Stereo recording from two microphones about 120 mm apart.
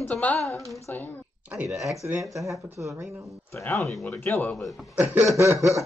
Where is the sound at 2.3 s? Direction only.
25° right (ahead or behind).